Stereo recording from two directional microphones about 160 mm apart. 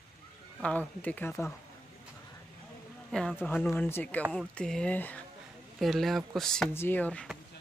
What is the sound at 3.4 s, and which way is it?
Speech, 10° left (ahead or behind).